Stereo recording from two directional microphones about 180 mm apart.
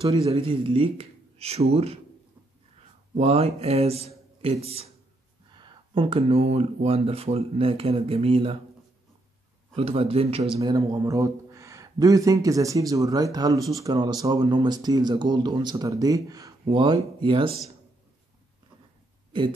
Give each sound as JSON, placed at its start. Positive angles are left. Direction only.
{"t": 0.0, "sound": "speech", "side_deg": -30}
{"t": 3.2, "sound": "speech", "side_deg": -35}
{"t": 9.8, "sound": "a man's voice", "side_deg": -35}